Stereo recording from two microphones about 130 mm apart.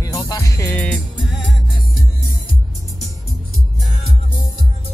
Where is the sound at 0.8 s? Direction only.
10° left (ahead or behind).